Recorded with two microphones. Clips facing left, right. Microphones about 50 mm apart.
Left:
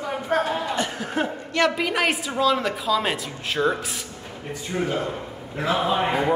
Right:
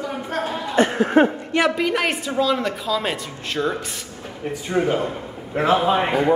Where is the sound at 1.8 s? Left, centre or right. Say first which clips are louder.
Right 2 dB; centre.